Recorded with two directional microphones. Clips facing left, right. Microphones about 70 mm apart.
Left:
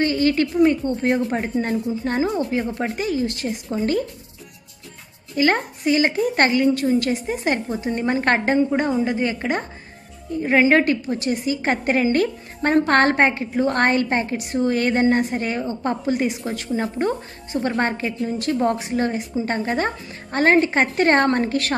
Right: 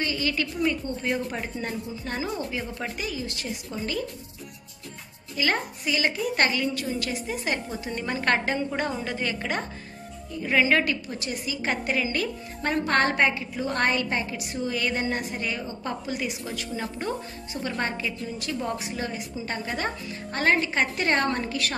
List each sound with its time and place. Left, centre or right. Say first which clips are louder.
0.0 s a woman's voice: left 9 dB; left
5.3 s a woman's voice: left 7 dB; left